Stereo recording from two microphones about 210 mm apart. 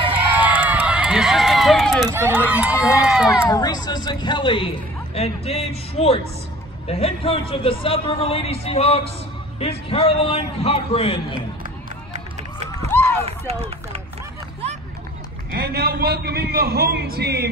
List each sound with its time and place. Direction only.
0.1 s run: 5° right (ahead or behind)
2.0 s run: 10° right (ahead or behind)
2.7 s speech: 15° left (ahead or behind)
3.0 s speech: 5° right (ahead or behind)
3.4 s a man's voice: 20° left (ahead or behind)
11.6 s run: 35° right (ahead or behind)
12.8 s run: 10° left (ahead or behind)
13.2 s speech: 30° right (ahead or behind)
15.5 s a man's voice: 50° right (ahead or behind)